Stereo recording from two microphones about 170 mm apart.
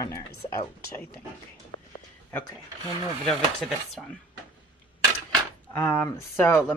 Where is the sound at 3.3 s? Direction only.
Centre (ahead or behind).